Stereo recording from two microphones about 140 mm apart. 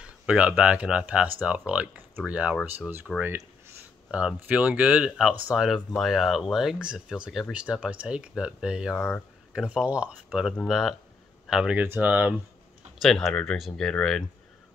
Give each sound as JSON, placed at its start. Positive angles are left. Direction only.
{"t": 0.0, "sound": "speech", "side_deg": -10}
{"t": 3.2, "sound": "speech", "side_deg": -15}
{"t": 8.9, "sound": "speech", "side_deg": 15}
{"t": 9.5, "sound": "speech", "side_deg": -5}
{"t": 13.0, "sound": "speech", "side_deg": 0}